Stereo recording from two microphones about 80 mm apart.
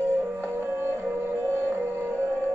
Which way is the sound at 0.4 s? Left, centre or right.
Right.